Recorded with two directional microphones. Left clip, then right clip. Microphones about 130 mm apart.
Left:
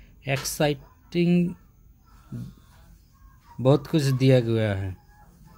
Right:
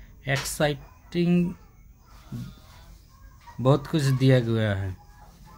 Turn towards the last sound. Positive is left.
turn(degrees=20)  # may be behind; listen again after turning